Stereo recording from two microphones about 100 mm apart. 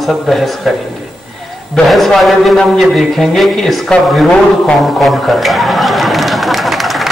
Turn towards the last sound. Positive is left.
turn(degrees=0)  # may be behind; listen again after turning